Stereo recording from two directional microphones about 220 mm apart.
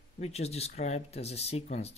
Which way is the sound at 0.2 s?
30° left (ahead or behind).